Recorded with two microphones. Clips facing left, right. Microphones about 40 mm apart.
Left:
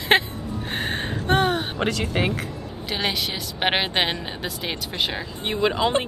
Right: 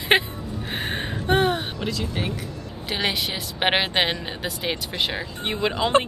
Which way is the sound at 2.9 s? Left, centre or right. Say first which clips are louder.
Even; centre.